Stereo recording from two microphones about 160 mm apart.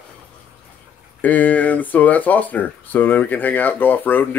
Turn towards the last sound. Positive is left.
turn(degrees=10)  # may be behind; listen again after turning